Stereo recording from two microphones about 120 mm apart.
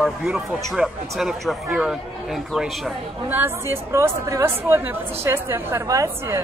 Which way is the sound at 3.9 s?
25° right (ahead or behind).